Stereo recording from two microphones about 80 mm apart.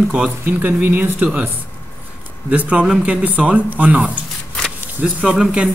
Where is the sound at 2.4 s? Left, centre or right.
Centre.